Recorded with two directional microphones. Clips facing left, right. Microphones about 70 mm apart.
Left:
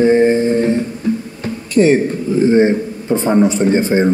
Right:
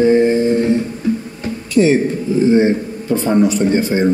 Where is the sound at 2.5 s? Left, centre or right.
Left.